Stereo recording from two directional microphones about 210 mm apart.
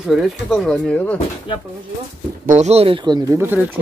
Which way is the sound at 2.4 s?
35° right (ahead or behind).